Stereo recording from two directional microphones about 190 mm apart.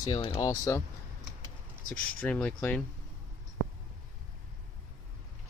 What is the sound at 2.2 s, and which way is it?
Speech, 5° left (ahead or behind).